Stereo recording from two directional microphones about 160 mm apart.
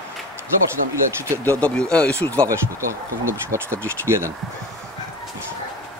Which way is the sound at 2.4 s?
20° right (ahead or behind).